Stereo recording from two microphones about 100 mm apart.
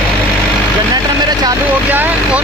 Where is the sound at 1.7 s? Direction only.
15° right (ahead or behind).